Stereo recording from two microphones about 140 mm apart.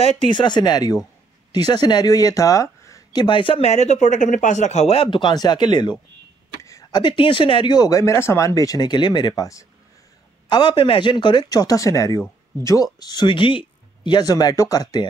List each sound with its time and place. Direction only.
0.0 s speech: 35° left (ahead or behind)
10.5 s speech: 35° left (ahead or behind)